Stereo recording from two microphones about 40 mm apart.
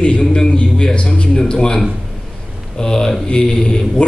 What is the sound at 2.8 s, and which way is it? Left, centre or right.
A man's voice, centre.